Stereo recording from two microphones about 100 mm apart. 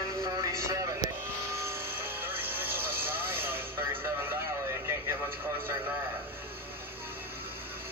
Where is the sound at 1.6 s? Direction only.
20° right (ahead or behind).